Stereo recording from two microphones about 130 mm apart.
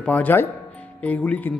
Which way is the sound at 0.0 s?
10° left (ahead or behind).